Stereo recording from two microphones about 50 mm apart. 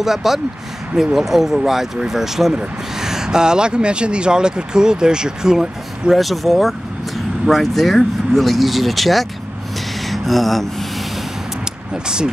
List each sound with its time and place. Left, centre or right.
0.0 s speech: centre
11.9 s speech: centre